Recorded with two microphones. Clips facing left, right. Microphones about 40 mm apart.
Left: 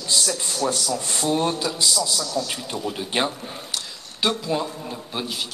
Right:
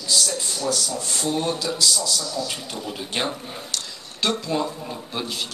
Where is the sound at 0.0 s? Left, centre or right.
Left.